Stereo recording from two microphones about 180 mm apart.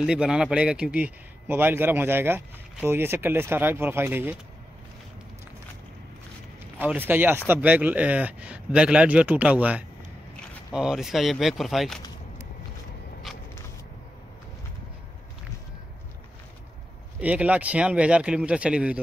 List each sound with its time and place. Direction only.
0.0 s speech: 5° right (ahead or behind)
6.8 s speech: 10° right (ahead or behind)
17.2 s speech: 5° right (ahead or behind)